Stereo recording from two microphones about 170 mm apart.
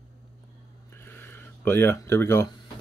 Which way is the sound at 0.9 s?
10° left (ahead or behind).